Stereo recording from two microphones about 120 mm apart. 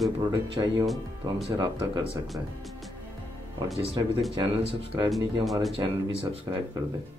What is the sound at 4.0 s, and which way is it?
Speech, 35° right (ahead or behind).